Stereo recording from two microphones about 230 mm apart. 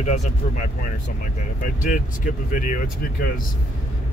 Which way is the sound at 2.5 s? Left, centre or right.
Left.